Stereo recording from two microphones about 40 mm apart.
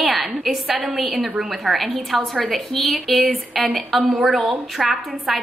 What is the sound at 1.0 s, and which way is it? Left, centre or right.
A woman's voice, centre.